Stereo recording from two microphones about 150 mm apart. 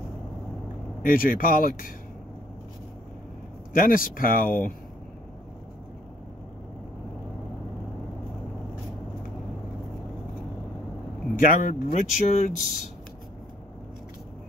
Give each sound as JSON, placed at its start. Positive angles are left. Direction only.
{"t": 1.0, "sound": "speech", "side_deg": 70}
{"t": 3.7, "sound": "speech", "side_deg": 70}
{"t": 11.3, "sound": "speech", "side_deg": 70}